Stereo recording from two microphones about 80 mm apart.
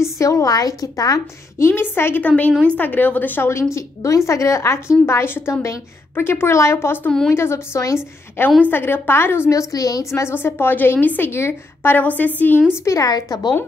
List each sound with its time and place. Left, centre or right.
0.0 s a woman's voice: left
1.7 s a woman's voice: left
2.2 s a woman's voice: centre
9.5 s a woman's voice: left
10.2 s a woman's voice: left
12.5 s a woman's voice: centre
12.8 s a woman's voice: left
13.1 s speech: left